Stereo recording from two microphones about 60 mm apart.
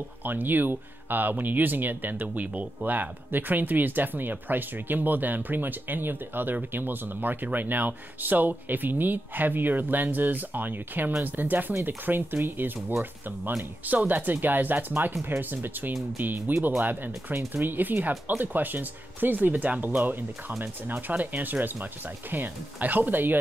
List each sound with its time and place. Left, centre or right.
0.2 s speech: right
13.8 s speech: right